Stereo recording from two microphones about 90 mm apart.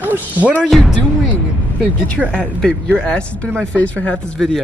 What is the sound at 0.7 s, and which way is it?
Speech, centre (ahead or behind).